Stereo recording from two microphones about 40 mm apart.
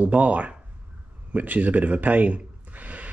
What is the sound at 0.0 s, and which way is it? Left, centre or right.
Speech, right.